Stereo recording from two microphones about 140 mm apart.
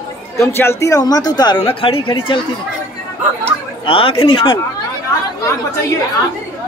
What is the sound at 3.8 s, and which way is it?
Speech, 40° left (ahead or behind).